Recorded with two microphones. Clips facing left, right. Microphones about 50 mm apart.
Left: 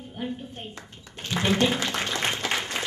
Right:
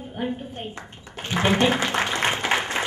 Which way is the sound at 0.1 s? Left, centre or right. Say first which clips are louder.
Right 4 dB; right.